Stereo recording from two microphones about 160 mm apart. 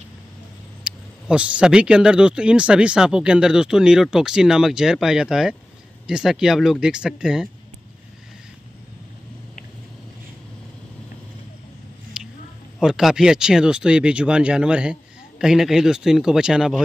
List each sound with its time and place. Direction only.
0.8 s speech: 5° right (ahead or behind)
12.2 s a sound: 5° right (ahead or behind)
12.7 s speech: centre (ahead or behind)